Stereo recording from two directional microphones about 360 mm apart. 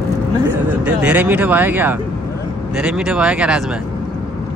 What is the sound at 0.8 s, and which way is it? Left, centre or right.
A man's voice, centre.